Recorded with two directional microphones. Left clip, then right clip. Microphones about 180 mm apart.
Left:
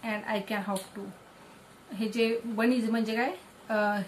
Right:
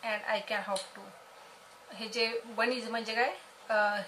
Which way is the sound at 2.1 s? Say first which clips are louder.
Left 3 dB; 15° right (ahead or behind).